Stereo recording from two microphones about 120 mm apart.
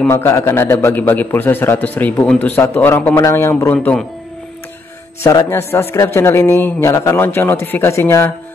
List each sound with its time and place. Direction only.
0.1 s a man's voice: 20° left (ahead or behind)
5.2 s a man's voice: 25° left (ahead or behind)